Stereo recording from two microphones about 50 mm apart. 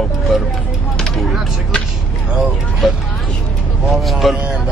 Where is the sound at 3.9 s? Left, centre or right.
Centre.